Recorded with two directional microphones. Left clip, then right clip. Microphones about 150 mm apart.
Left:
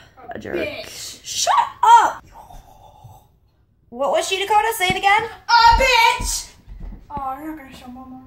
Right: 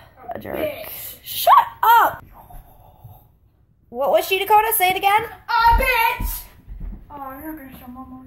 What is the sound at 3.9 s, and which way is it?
A woman's voice, 35° right (ahead or behind).